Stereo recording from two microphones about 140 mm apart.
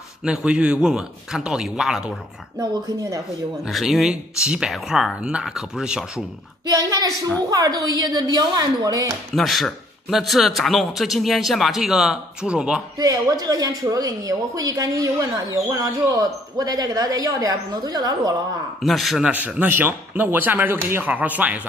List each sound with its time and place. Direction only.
0.2 s a man's voice: 5° right (ahead or behind)
3.6 s a man's voice: centre (ahead or behind)
6.7 s a woman's voice: 25° right (ahead or behind)
9.3 s a man's voice: centre (ahead or behind)
12.9 s speech: 25° right (ahead or behind)
18.8 s a man's voice: centre (ahead or behind)
19.3 s speech: 10° right (ahead or behind)